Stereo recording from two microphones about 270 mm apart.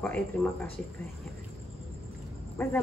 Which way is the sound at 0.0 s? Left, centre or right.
Centre.